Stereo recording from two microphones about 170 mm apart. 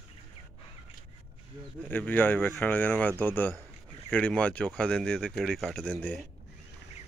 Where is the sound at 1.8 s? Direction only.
10° left (ahead or behind).